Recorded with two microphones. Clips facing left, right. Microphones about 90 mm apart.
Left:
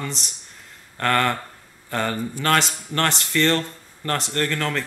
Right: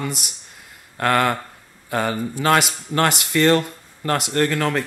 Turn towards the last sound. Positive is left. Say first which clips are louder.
# right 4 dB
turn(degrees=-15)  # may be behind; listen again after turning